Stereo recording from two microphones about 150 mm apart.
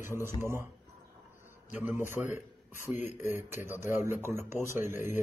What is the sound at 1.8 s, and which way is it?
Speech, 15° right (ahead or behind).